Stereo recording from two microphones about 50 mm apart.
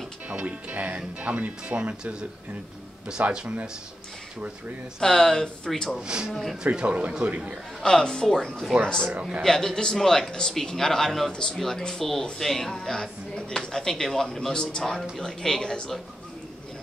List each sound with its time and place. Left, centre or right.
0.3 s speech: right
5.0 s speech: centre
6.0 s speech: centre
7.8 s speech: centre